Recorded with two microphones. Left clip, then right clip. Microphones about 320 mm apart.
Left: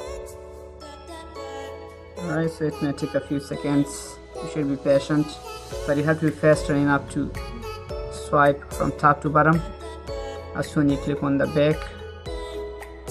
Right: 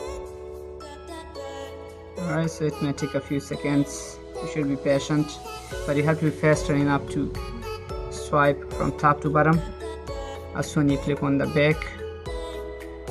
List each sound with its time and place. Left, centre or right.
2.3 s speech: centre
3.1 s speech: centre
8.2 s music: centre
10.6 s speech: centre